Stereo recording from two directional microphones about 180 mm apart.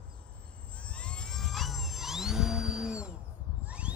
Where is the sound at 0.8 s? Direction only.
5° left (ahead or behind).